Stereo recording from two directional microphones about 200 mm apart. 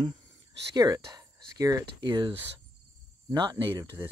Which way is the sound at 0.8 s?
15° right (ahead or behind).